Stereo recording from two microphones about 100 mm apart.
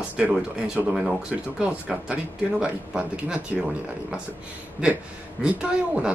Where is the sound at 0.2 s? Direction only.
10° right (ahead or behind).